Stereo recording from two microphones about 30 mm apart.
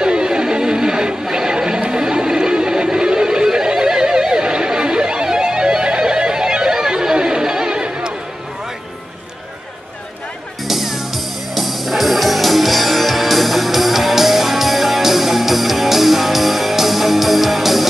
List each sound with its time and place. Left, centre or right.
0.0 s music: right
1.3 s a sound: right
10.6 s music: centre